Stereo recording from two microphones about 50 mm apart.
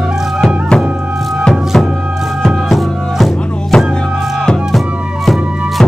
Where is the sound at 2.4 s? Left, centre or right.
Centre.